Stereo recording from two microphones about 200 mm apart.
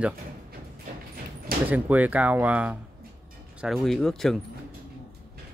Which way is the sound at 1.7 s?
10° right (ahead or behind).